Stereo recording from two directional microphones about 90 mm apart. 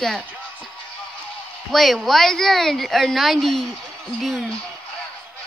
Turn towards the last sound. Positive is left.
turn(degrees=0)  # may be behind; listen again after turning